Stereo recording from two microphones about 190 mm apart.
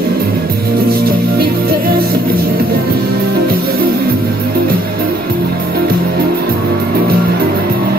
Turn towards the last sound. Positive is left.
turn(degrees=-50)  # may be behind; listen again after turning